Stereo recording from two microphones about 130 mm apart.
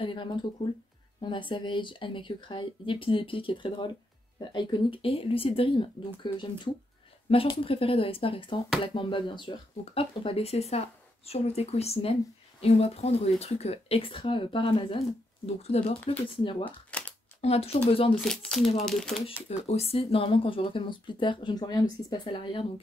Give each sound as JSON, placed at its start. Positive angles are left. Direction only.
{"t": 0.0, "sound": "speech", "side_deg": 40}
{"t": 15.4, "sound": "speech", "side_deg": 55}
{"t": 16.9, "sound": "a sound", "side_deg": 10}
{"t": 17.4, "sound": "speech", "side_deg": 50}
{"t": 18.2, "sound": "speech", "side_deg": 5}
{"t": 19.7, "sound": "speech", "side_deg": 50}